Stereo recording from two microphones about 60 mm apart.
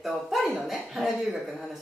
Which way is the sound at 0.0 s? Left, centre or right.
Centre.